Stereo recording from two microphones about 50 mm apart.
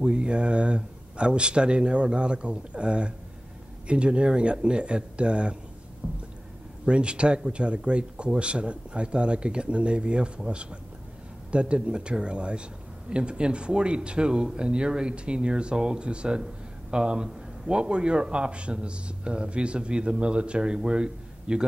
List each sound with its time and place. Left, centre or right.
0.0 s a man's voice: centre